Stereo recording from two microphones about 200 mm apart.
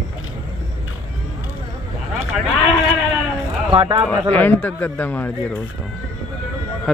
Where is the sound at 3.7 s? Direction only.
25° right (ahead or behind).